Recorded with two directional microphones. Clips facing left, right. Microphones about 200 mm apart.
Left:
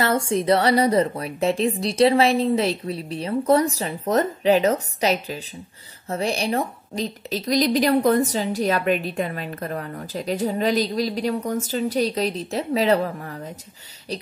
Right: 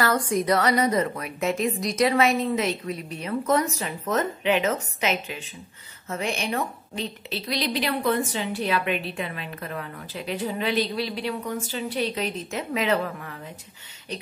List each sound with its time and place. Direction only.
0.0 s a woman's voice: 25° left (ahead or behind)